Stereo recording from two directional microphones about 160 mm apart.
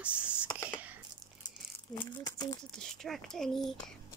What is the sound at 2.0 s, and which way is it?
Speech, 25° left (ahead or behind).